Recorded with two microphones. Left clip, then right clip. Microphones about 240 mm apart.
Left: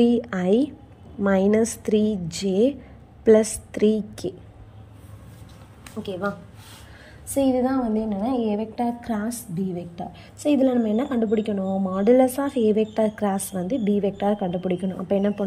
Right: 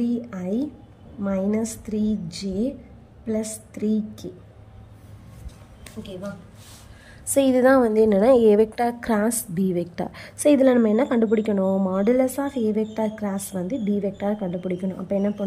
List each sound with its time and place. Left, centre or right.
0.1 s a woman's voice: centre
3.7 s a woman's voice: centre
7.3 s a woman's voice: centre